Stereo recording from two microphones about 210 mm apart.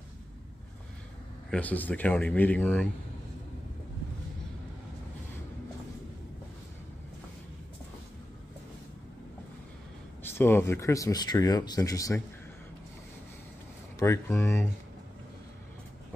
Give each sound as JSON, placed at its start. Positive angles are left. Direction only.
{"t": 1.5, "sound": "speech", "side_deg": 5}
{"t": 10.2, "sound": "speech", "side_deg": 10}
{"t": 13.9, "sound": "speech", "side_deg": 15}